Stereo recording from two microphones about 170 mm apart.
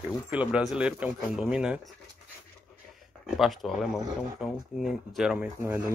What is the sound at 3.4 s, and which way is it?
Speech, centre (ahead or behind).